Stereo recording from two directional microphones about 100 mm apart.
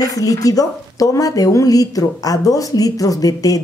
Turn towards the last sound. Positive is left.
turn(degrees=35)  # may be behind; listen again after turning